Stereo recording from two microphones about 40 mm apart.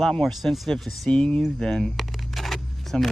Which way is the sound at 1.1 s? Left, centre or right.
Left.